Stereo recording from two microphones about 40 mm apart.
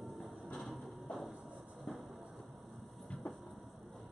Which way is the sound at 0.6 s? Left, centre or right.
Centre.